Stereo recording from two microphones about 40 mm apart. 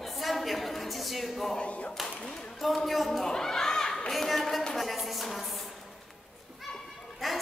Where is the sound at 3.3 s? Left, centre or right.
Centre.